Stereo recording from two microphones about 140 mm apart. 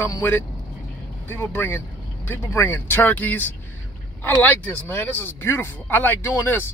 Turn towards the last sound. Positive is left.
turn(degrees=15)  # may be behind; listen again after turning